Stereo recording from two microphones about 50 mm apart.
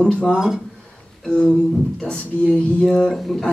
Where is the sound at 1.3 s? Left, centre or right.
Centre.